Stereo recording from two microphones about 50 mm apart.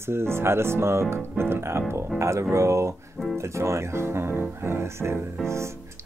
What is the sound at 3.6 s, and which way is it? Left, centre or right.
Speech, right.